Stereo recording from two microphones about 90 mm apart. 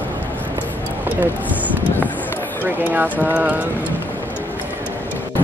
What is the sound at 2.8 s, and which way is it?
Speech, 20° right (ahead or behind).